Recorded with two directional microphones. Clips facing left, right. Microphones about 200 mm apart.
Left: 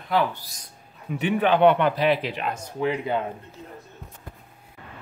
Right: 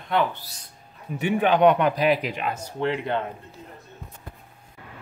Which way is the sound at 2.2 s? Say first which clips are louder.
Even; 5° right (ahead or behind).